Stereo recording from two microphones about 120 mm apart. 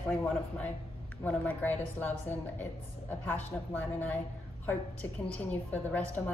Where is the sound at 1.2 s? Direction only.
15° left (ahead or behind).